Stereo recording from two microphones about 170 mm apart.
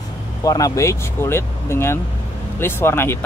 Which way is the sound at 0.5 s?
20° left (ahead or behind).